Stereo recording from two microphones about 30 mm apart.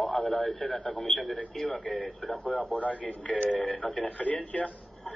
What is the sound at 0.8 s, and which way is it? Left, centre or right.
Speech, left.